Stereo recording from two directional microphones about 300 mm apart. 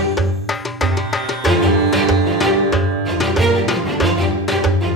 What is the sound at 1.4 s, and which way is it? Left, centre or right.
Music, centre.